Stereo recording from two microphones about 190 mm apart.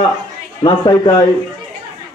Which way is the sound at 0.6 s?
20° left (ahead or behind).